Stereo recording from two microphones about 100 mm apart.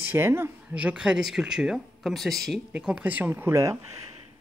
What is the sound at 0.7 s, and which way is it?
Speech, 10° right (ahead or behind).